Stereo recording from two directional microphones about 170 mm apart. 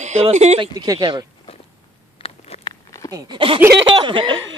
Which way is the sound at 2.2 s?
30° left (ahead or behind).